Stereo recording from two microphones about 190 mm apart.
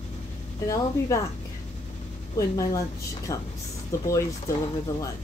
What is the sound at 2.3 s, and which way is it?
A woman's voice, 15° left (ahead or behind).